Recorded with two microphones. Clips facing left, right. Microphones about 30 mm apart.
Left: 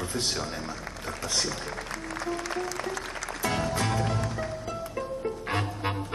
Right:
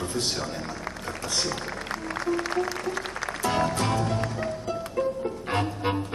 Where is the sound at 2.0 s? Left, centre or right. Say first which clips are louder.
Right 5 dB; right.